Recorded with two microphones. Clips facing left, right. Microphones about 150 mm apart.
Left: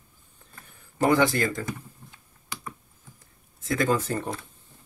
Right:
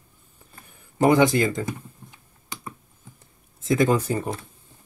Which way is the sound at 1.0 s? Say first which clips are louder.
Right 4 dB; 20° right (ahead or behind).